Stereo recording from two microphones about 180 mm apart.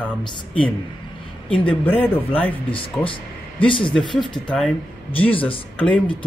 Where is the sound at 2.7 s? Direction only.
30° left (ahead or behind).